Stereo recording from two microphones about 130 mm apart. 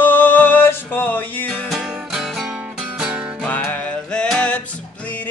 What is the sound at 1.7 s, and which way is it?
Music, 5° right (ahead or behind).